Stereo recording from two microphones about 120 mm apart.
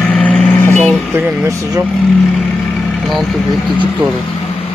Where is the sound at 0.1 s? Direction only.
5° left (ahead or behind).